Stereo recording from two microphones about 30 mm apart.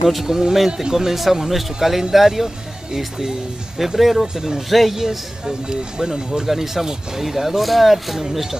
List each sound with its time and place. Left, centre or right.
0.0 s speech: centre
4.9 s speech: centre
6.4 s speech: centre